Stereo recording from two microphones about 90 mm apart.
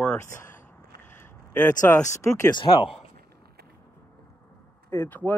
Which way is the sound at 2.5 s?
65° left (ahead or behind).